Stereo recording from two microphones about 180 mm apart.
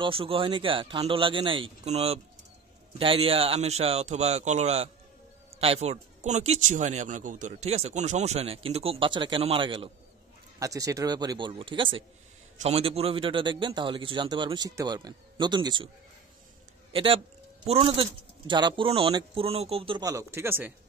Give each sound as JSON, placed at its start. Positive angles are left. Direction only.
{"t": 0.0, "sound": "a man's voice", "side_deg": -30}
{"t": 10.6, "sound": "a man's voice", "side_deg": -20}
{"t": 16.9, "sound": "a man's voice", "side_deg": -30}